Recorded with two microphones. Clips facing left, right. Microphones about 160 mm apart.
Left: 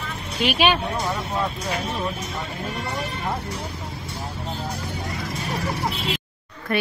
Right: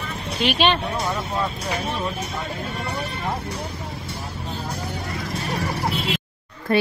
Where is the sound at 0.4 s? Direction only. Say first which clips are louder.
Even; 5° left (ahead or behind).